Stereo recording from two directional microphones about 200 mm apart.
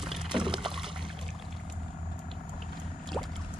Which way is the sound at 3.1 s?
Centre (ahead or behind).